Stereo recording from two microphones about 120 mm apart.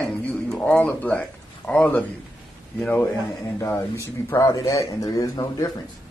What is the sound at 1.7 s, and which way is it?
A man's voice, 10° left (ahead or behind).